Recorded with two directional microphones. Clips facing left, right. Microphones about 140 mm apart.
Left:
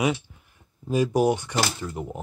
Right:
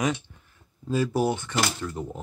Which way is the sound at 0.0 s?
10° left (ahead or behind).